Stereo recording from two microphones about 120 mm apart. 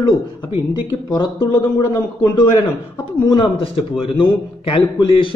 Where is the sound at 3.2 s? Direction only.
40° left (ahead or behind).